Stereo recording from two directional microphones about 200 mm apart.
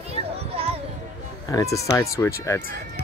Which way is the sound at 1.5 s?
15° left (ahead or behind).